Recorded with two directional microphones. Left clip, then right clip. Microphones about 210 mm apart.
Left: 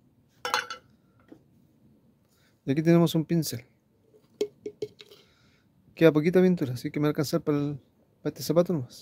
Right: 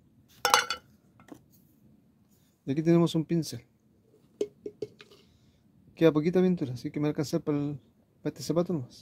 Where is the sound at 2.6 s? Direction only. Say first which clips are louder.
Left 2 dB; 20° left (ahead or behind).